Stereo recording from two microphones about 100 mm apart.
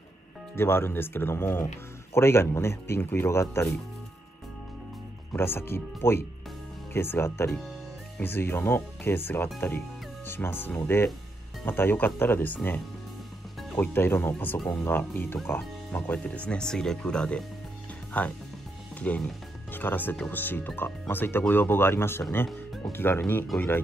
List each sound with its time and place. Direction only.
0.6 s speech: 25° left (ahead or behind)
5.3 s speech: 20° left (ahead or behind)